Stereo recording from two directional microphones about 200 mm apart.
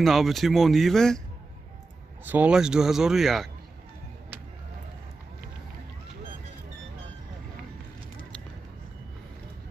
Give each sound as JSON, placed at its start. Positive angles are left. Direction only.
{"t": 0.0, "sound": "speech", "side_deg": 0}
{"t": 2.2, "sound": "speech", "side_deg": -5}